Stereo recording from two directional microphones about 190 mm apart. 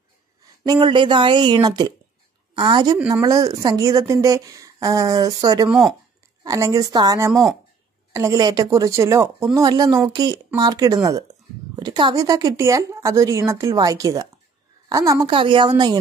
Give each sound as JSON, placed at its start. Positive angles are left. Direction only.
{"t": 0.7, "sound": "a woman's voice", "side_deg": -25}
{"t": 5.7, "sound": "speech", "side_deg": 0}
{"t": 6.4, "sound": "a woman's voice", "side_deg": -15}